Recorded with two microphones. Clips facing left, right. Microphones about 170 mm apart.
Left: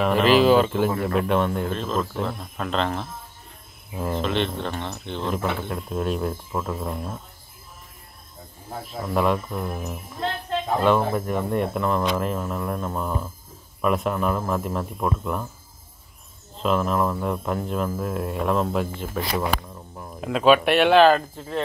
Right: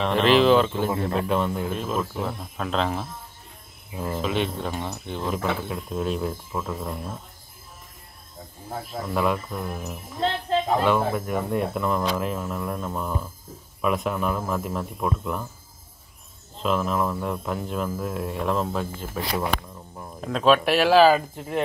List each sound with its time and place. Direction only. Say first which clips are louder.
0.0 s speech: left 1 dB; 5° left (ahead or behind)
8.8 s speech: left 2 dB; centre (ahead or behind)
10.9 s speech: left 2 dB; 5° right (ahead or behind)
16.5 s speech: left 2 dB; centre (ahead or behind)
21.4 s speech: right 1 dB; 15° right (ahead or behind)